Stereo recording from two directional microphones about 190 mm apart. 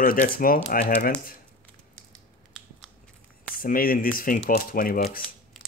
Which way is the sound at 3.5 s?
50° left (ahead or behind).